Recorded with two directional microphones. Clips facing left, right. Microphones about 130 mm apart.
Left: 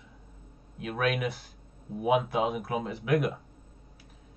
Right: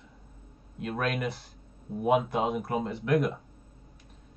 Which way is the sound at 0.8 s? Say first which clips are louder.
Left 1 dB; 5° left (ahead or behind).